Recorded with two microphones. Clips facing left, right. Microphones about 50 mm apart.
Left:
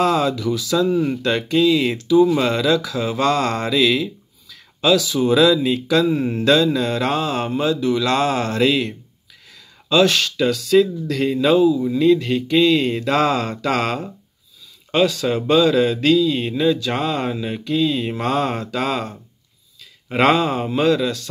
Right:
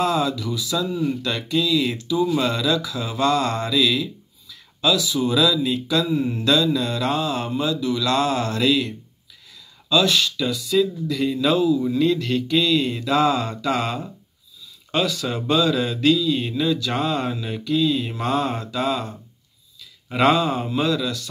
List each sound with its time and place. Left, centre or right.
0.0 s speech: left
0.7 s mantra: left
2.3 s a man's voice: left
2.6 s speech: left
5.2 s mantra: left
9.8 s speech: left
11.3 s a man's voice: left
11.7 s mantra: centre; by 14.0 s left
14.9 s mantra: left
17.3 s a man's voice: left
17.6 s mantra: left
20.2 s mantra: left